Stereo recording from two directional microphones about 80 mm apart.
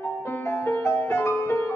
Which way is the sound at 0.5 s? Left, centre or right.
Left.